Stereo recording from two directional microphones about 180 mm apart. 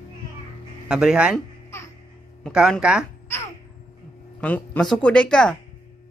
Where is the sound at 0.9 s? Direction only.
5° right (ahead or behind).